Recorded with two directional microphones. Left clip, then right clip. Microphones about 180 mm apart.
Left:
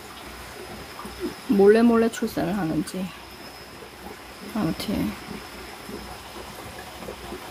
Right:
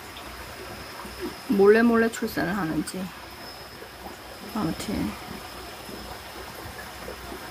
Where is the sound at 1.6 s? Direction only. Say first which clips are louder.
Left 1 dB; 15° left (ahead or behind).